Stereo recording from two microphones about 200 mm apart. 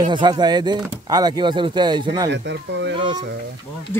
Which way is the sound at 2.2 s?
65° right (ahead or behind).